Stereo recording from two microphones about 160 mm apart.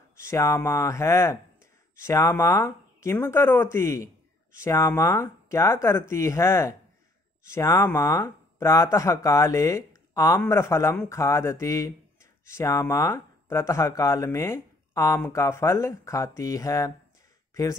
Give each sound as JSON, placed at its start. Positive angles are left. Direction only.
{"t": 0.2, "sound": "speech", "side_deg": 15}